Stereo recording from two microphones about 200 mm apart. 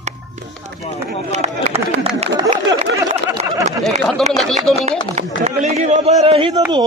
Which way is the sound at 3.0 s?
20° right (ahead or behind).